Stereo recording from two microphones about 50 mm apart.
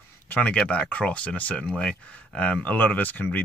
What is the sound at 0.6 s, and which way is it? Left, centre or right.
Speech, centre.